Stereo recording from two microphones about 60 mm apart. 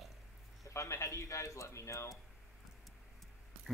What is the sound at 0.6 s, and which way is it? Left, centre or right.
A man's voice, left.